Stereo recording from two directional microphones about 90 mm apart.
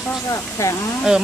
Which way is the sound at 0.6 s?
30° left (ahead or behind).